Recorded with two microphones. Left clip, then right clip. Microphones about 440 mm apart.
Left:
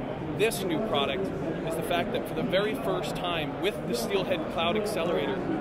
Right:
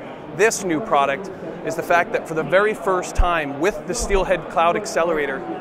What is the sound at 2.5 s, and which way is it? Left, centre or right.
A man's voice, right.